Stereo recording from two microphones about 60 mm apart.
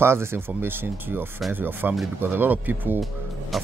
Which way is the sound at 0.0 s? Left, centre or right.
Right.